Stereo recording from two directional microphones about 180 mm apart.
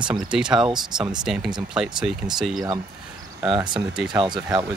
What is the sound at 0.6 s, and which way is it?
Speech, 25° right (ahead or behind).